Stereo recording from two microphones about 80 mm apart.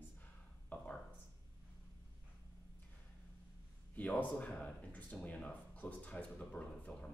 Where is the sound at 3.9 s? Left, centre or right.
Left.